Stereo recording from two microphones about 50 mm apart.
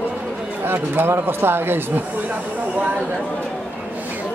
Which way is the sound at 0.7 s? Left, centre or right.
Right.